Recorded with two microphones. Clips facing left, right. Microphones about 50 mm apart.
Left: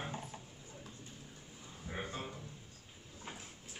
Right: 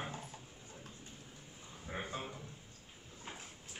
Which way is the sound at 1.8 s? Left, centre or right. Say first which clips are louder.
Even; centre.